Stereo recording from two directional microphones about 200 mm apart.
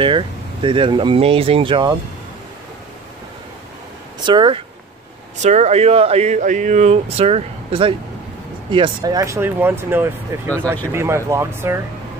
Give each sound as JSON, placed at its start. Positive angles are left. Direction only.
{"t": 0.0, "sound": "speech", "side_deg": -25}
{"t": 4.2, "sound": "speech", "side_deg": -25}